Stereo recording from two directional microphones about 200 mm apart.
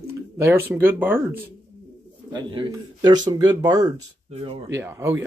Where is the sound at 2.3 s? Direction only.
20° right (ahead or behind).